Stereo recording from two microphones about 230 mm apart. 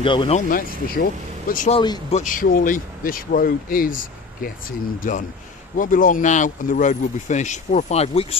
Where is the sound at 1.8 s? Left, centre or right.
Centre.